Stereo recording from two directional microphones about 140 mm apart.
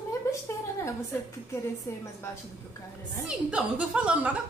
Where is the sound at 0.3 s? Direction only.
20° left (ahead or behind).